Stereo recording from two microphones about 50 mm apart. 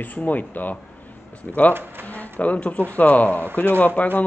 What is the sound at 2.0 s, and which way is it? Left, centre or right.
A man's voice, left.